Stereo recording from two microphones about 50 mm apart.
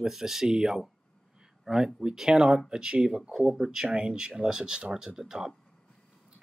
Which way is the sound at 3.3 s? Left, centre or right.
Centre.